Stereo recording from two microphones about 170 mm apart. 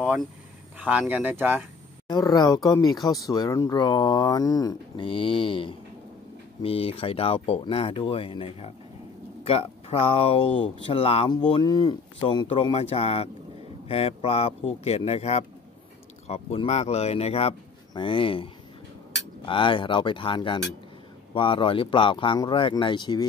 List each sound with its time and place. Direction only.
0.7 s speech: 10° right (ahead or behind)
2.0 s speech: 20° left (ahead or behind)